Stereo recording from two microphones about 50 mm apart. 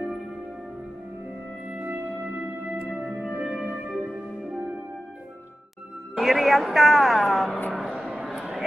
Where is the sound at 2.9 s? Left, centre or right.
Right.